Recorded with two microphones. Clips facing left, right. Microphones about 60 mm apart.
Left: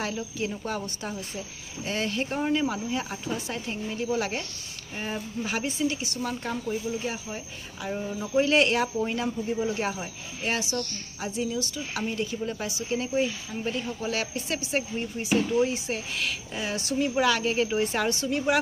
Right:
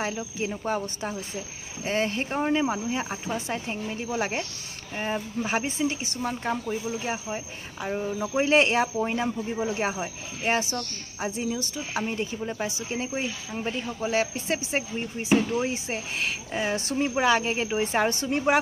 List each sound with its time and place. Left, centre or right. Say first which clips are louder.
0.0 s speech: right 1 dB; right
18.1 s a woman's voice: right 2 dB; right